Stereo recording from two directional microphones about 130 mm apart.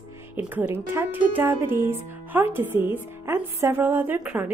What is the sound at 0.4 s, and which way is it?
A woman's voice, 15° right (ahead or behind).